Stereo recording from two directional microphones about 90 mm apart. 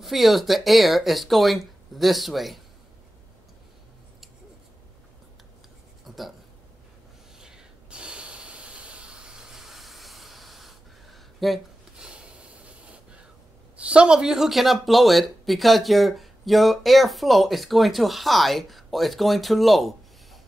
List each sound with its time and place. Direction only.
0.0 s speech: centre (ahead or behind)
6.0 s a sound: centre (ahead or behind)
7.3 s snort: 10° right (ahead or behind)
12.1 s train: 10° right (ahead or behind)
13.7 s speech: 10° right (ahead or behind)